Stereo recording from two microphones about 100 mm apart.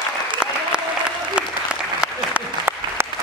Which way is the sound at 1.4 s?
10° right (ahead or behind).